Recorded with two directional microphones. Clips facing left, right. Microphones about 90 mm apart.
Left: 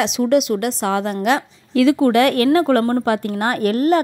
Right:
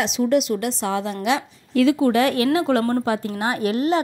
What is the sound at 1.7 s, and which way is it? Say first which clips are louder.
Speech: left 3 dB; 65° left (ahead or behind).